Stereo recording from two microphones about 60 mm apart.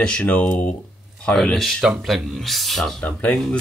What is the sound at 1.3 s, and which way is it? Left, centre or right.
Speech, centre.